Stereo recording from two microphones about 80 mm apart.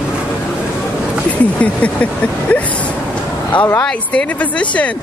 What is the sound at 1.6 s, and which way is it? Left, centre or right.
Speech, centre.